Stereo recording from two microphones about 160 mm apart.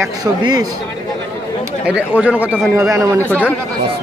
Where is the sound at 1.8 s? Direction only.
10° right (ahead or behind).